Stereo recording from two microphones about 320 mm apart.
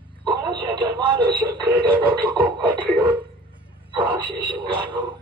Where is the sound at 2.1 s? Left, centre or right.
Centre.